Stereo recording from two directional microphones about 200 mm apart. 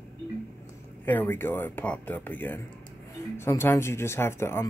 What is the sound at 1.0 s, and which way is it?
Speech, 10° left (ahead or behind).